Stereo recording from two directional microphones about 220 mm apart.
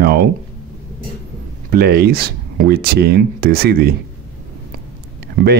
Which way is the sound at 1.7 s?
45° right (ahead or behind).